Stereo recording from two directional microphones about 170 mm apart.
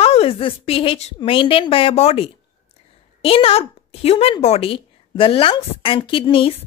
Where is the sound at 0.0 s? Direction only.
35° left (ahead or behind).